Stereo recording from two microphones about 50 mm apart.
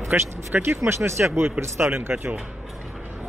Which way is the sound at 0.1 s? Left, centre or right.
Right.